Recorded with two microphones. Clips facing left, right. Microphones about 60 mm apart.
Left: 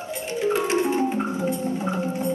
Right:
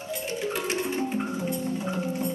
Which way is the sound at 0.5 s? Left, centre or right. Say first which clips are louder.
Left 8 dB; left.